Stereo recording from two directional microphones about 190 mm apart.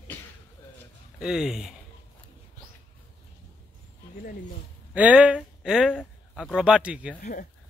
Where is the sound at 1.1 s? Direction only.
5° right (ahead or behind).